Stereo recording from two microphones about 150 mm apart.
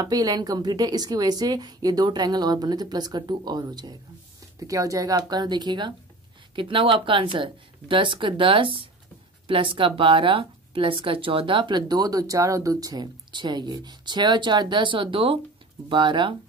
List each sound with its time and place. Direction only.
0.0 s a woman's voice: 25° right (ahead or behind)